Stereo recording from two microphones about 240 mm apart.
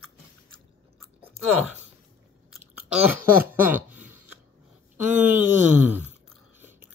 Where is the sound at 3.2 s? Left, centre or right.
Right.